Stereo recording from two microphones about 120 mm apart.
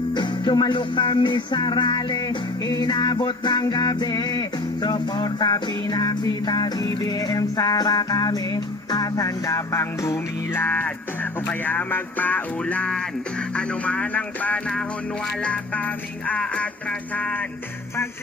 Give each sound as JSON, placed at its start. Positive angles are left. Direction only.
{"t": 0.1, "sound": "music", "side_deg": 40}